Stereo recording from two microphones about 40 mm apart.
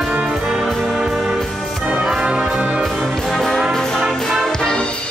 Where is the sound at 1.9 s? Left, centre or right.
Centre.